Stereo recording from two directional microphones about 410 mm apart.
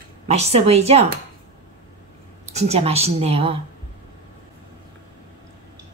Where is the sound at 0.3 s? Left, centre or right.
Centre.